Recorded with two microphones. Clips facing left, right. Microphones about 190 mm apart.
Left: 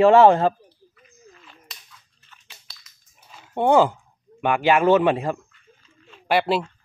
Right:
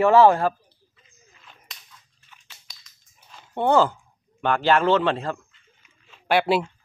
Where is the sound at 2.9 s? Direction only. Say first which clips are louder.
Left 2 dB; 5° left (ahead or behind).